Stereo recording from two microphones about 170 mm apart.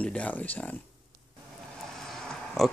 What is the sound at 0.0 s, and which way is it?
Speech, 10° left (ahead or behind).